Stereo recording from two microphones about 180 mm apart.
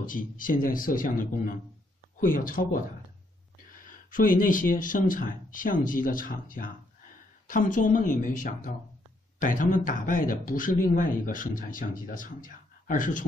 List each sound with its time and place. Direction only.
0.0 s a man's voice: 50° left (ahead or behind)
3.8 s a man's voice: 50° left (ahead or behind)